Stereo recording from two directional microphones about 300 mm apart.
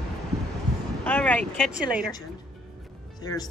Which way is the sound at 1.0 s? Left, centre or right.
Centre.